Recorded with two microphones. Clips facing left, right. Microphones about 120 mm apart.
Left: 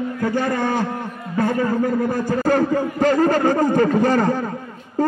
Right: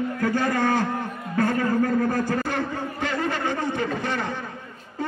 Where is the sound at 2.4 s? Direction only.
40° left (ahead or behind).